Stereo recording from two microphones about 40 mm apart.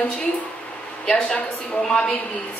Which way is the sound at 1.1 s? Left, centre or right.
Left.